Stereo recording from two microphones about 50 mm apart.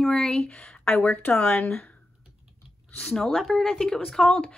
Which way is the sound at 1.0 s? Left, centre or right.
Left.